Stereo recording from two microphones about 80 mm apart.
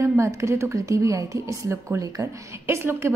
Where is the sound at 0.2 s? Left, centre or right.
Right.